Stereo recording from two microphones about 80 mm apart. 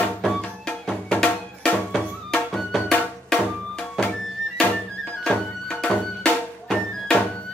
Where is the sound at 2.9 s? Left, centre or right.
Centre.